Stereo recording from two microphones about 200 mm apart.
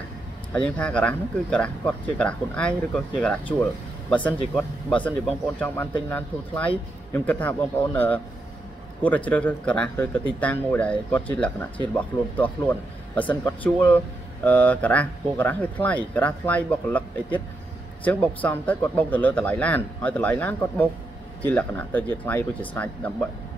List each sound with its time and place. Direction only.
0.5 s speech: 5° left (ahead or behind)